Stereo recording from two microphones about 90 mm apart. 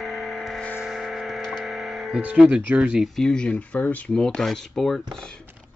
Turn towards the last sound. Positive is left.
turn(degrees=5)  # may be behind; listen again after turning